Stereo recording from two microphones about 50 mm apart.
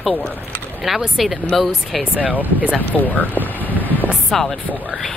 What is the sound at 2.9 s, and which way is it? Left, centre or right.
Speech, left.